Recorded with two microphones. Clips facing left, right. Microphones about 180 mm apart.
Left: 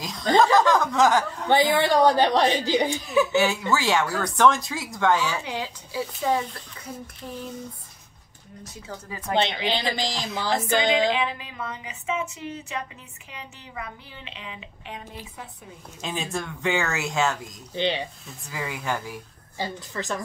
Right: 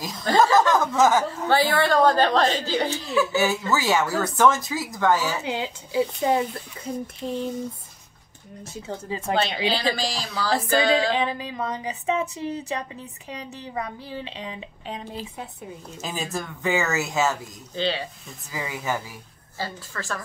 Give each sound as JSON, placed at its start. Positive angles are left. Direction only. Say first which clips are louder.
{"t": 0.3, "sound": "a woman's voice", "louder": "left 1 dB", "side_deg": 20}
{"t": 0.6, "sound": "speech", "louder": "right 1 dB", "side_deg": -5}
{"t": 1.7, "sound": "speech", "louder": "even", "side_deg": 15}
{"t": 3.3, "sound": "speech", "louder": "even", "side_deg": 0}
{"t": 5.4, "sound": "speech", "louder": "right 3 dB", "side_deg": -25}
{"t": 8.8, "sound": "speech", "louder": "right 6 dB", "side_deg": -25}
{"t": 9.3, "sound": "a woman's voice", "louder": "even", "side_deg": 20}
{"t": 11.1, "sound": "speech", "louder": "right 3 dB", "side_deg": -35}
{"t": 16.0, "sound": "speech", "louder": "even", "side_deg": -5}
{"t": 17.7, "sound": "a woman's voice", "louder": "even", "side_deg": 20}
{"t": 18.5, "sound": "speech", "louder": "right 1 dB", "side_deg": -5}
{"t": 19.6, "sound": "a woman's voice", "louder": "left 2 dB", "side_deg": 20}